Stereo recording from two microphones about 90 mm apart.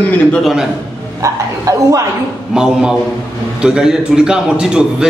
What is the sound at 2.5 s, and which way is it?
A man's voice, 10° right (ahead or behind).